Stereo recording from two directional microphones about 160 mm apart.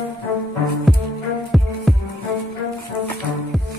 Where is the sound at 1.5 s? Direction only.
Centre (ahead or behind).